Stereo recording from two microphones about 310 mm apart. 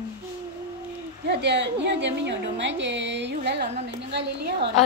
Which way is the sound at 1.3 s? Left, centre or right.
Right.